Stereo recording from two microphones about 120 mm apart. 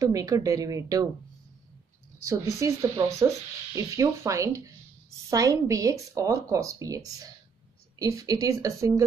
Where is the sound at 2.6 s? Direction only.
25° right (ahead or behind).